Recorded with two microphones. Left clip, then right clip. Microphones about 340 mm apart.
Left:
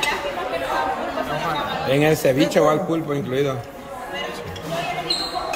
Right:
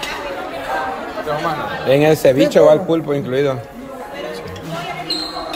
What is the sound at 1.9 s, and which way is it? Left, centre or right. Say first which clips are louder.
Speech: right 6 dB; centre.